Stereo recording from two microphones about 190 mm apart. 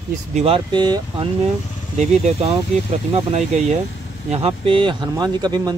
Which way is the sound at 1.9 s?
35° right (ahead or behind).